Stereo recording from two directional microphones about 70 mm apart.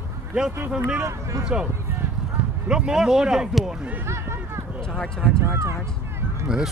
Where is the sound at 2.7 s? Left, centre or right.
Centre.